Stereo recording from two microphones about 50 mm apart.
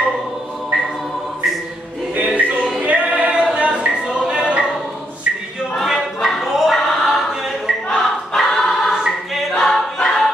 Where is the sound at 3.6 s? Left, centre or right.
Right.